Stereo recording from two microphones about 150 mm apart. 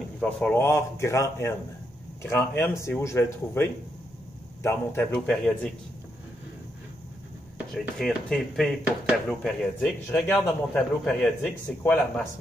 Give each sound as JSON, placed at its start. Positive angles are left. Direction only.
{"t": 0.2, "sound": "a man's voice", "side_deg": 5}
{"t": 0.7, "sound": "a man's voice", "side_deg": 20}
{"t": 4.6, "sound": "a man's voice", "side_deg": 10}
{"t": 7.5, "sound": "a man's voice", "side_deg": 0}